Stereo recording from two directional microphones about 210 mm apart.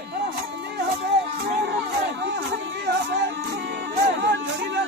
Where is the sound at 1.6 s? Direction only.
60° right (ahead or behind).